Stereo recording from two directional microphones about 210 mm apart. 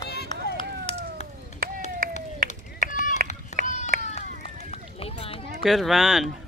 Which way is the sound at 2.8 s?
35° left (ahead or behind).